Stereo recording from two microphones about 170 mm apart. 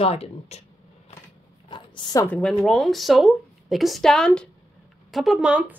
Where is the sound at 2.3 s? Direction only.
5° left (ahead or behind).